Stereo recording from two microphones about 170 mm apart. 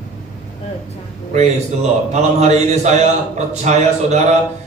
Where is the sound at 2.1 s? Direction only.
45° right (ahead or behind).